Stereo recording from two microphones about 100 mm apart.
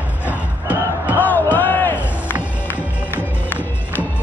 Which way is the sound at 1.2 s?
15° left (ahead or behind).